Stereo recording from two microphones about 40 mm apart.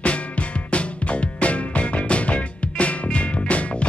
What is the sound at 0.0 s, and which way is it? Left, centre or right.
Music, left.